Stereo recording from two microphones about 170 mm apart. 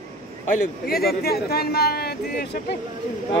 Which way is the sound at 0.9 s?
65° left (ahead or behind).